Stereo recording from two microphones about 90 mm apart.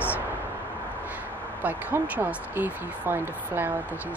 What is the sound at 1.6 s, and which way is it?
Speech, 20° right (ahead or behind).